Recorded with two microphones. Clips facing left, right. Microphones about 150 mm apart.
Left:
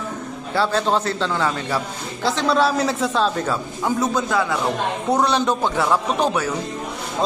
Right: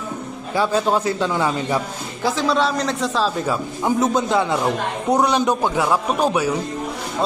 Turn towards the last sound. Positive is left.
turn(degrees=-10)  # may be behind; listen again after turning